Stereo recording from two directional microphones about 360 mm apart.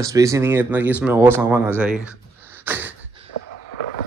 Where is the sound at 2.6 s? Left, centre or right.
Centre.